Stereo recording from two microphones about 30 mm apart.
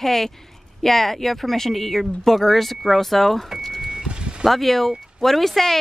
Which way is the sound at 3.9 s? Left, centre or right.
Right.